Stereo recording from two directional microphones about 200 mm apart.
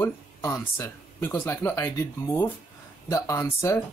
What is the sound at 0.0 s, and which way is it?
Speech, 15° left (ahead or behind).